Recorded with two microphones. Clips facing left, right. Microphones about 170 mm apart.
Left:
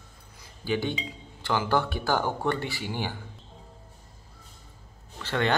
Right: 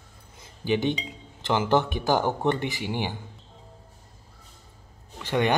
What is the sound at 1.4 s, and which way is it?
A man's voice, 20° right (ahead or behind).